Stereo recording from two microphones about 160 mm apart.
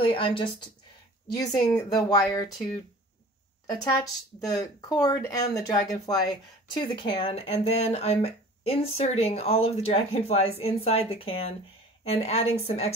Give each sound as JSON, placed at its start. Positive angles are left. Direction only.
{"t": 0.0, "sound": "speech", "side_deg": 35}
{"t": 3.8, "sound": "speech", "side_deg": 20}